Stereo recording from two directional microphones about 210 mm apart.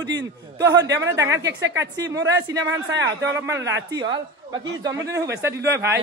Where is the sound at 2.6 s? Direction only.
60° right (ahead or behind).